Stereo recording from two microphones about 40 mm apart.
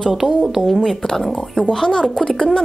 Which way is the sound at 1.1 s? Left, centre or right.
Centre.